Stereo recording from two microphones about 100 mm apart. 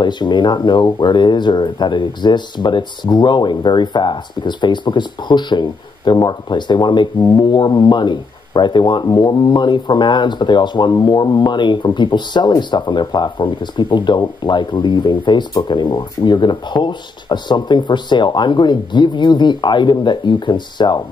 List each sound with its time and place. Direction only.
0.0 s speech: 50° left (ahead or behind)